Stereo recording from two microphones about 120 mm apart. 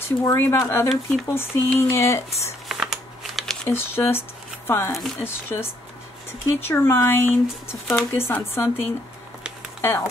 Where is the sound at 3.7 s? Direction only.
20° left (ahead or behind).